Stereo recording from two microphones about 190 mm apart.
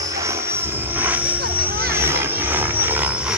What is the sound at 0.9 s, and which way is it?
Vehicle, 10° right (ahead or behind).